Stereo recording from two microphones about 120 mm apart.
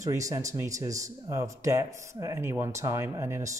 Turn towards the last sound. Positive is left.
turn(degrees=-25)  # may be behind; listen again after turning